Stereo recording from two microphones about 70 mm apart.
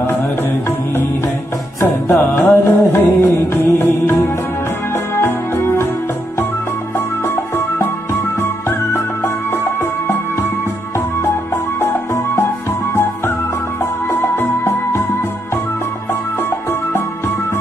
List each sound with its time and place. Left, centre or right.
0.0 s music: left
7.2 s music: left
11.5 s music: left
14.0 s music: left
16.1 s music: left